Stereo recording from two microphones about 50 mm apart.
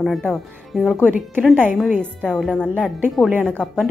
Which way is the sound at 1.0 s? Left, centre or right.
Right.